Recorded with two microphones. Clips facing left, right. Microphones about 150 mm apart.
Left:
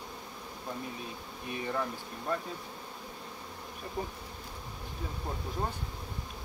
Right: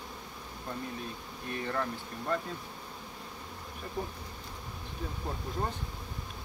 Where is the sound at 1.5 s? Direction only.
10° left (ahead or behind).